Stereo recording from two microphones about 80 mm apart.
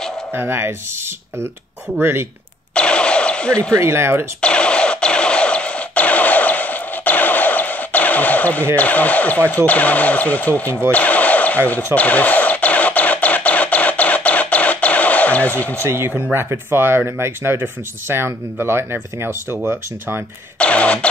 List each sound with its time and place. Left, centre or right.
0.3 s speech: right
2.0 s speech: right
2.7 s vehicle: centre
3.7 s speech: right
4.4 s a sound: centre
8.7 s speech: centre
10.9 s a sound: centre
16.3 s speech: right
20.5 s a sound: centre